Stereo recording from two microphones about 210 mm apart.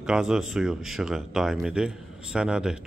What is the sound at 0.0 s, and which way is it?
Speech, centre (ahead or behind).